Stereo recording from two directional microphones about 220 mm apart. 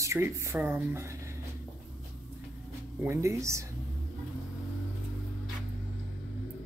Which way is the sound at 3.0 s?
10° right (ahead or behind).